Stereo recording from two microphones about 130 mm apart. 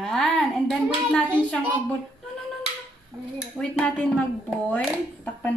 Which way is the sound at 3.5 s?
10° left (ahead or behind).